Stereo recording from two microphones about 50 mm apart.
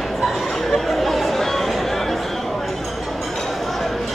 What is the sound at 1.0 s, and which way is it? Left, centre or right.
Chatter, centre.